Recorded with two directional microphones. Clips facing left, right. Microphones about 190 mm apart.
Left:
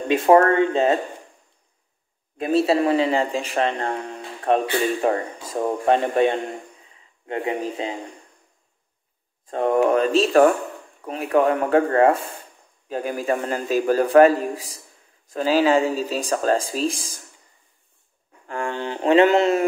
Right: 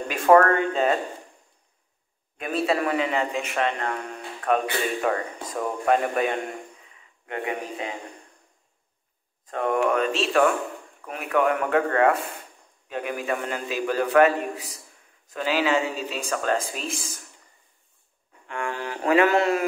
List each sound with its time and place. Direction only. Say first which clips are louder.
0.1 s speech: left 2 dB; 25° left (ahead or behind)
2.3 s a man's voice: left 6 dB; 30° left (ahead or behind)
9.5 s a man's voice: left 5 dB; 30° left (ahead or behind)
18.5 s mantra: left 4 dB; 30° left (ahead or behind)